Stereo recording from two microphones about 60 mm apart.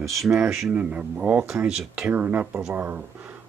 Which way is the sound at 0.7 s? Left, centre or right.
Right.